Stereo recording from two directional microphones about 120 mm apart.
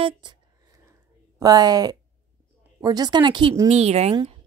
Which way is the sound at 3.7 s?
60° right (ahead or behind).